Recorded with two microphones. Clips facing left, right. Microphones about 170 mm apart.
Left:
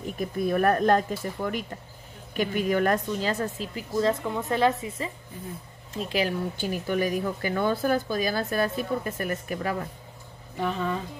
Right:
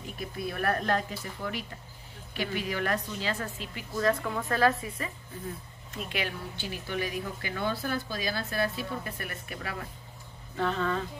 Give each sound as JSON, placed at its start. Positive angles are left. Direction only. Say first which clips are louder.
{"t": 0.0, "sound": "speech", "louder": "left 8 dB", "side_deg": 45}
{"t": 4.0, "sound": "a woman's voice", "louder": "left 2 dB", "side_deg": 20}
{"t": 5.9, "sound": "speech", "louder": "left 8 dB", "side_deg": 35}
{"t": 10.5, "sound": "speech", "louder": "left 1 dB", "side_deg": 15}